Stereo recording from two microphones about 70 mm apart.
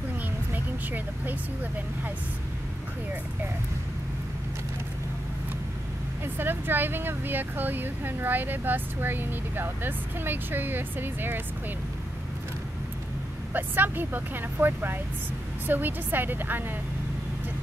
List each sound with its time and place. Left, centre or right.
0.5 s speech: right
6.2 s speech: right
13.5 s speech: right